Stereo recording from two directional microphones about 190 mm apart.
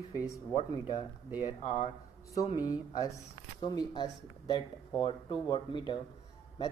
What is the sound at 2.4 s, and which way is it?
A man's voice, 20° left (ahead or behind).